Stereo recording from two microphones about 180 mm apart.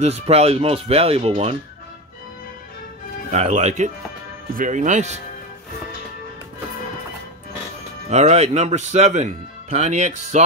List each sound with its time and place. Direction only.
0.0 s speech: 35° right (ahead or behind)
3.3 s speech: 40° right (ahead or behind)
8.1 s speech: 40° right (ahead or behind)